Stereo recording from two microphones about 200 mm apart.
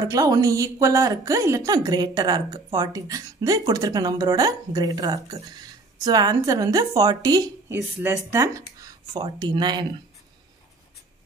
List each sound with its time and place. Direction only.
0.0 s a woman's voice: 15° right (ahead or behind)